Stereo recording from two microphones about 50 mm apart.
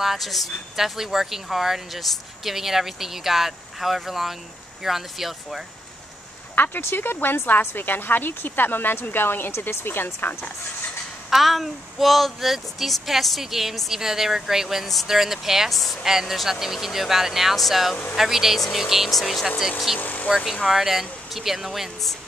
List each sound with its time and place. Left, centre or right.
0.0 s speech: centre
6.5 s a woman's voice: left
9.5 s a woman's voice: left
11.2 s speech: centre
20.0 s speech: left
20.6 s speech: centre